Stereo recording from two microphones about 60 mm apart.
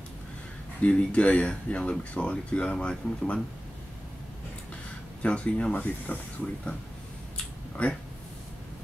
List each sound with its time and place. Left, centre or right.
0.8 s speech: centre
5.2 s speech: left
7.8 s speech: left